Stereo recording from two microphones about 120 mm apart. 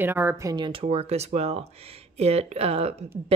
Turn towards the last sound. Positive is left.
turn(degrees=-60)  # may be behind; listen again after turning